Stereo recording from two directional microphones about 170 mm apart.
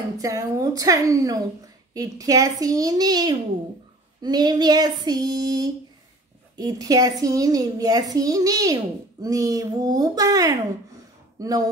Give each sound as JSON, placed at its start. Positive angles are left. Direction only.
{"t": 0.2, "sound": "a woman's voice", "side_deg": -20}